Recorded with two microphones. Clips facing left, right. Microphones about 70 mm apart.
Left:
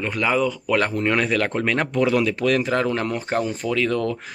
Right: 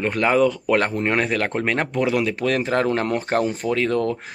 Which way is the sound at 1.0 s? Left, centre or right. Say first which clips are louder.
Even; right.